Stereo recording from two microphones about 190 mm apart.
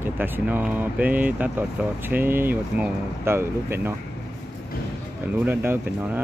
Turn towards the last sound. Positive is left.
turn(degrees=-10)  # may be behind; listen again after turning